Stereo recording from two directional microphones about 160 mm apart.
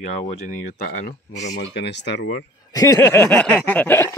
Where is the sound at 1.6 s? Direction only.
90° left.